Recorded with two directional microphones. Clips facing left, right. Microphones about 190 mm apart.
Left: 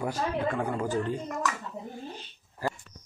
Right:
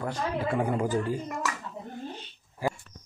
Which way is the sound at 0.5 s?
15° right (ahead or behind).